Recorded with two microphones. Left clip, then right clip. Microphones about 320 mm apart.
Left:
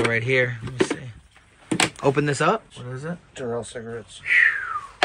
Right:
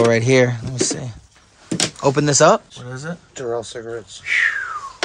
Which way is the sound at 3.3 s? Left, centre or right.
Right.